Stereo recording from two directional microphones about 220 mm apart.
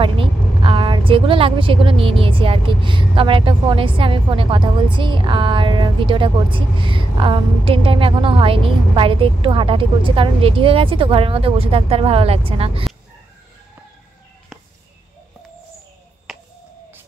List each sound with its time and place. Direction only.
0.0 s a woman's voice: 25° right (ahead or behind)
16.3 s finger snapping: centre (ahead or behind)